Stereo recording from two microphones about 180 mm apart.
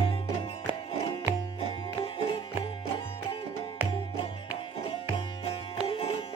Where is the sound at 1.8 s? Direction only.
30° left (ahead or behind).